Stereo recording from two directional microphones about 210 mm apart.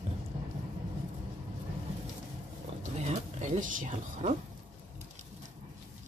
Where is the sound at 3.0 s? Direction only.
35° right (ahead or behind).